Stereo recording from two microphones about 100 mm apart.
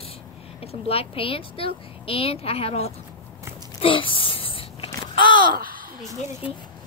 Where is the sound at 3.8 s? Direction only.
60° left (ahead or behind).